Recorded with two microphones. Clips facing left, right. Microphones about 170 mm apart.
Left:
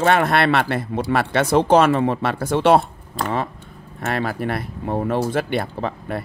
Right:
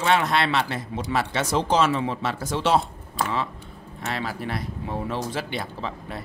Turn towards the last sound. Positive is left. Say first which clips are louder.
# left 7 dB
turn(degrees=55)  # may be behind; listen again after turning